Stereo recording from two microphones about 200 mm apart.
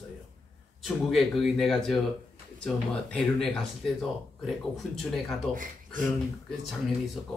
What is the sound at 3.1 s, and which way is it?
Speech, centre (ahead or behind).